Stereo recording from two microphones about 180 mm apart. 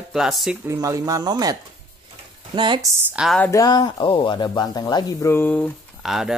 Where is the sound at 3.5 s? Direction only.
20° left (ahead or behind).